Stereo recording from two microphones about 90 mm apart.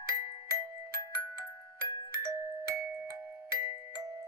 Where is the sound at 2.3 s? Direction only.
35° right (ahead or behind).